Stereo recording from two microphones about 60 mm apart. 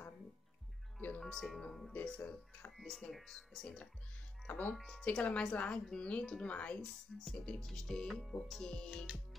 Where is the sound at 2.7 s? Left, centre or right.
Centre.